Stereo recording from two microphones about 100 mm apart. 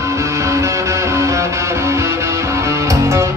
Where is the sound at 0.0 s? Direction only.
30° right (ahead or behind).